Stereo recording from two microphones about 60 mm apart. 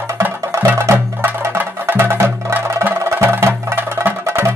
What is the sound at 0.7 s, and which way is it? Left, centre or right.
Music, right.